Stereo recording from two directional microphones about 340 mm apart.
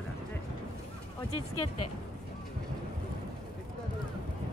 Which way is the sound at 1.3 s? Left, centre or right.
Left.